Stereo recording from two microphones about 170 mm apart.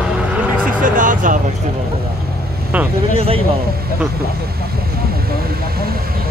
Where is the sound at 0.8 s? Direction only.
50° right (ahead or behind).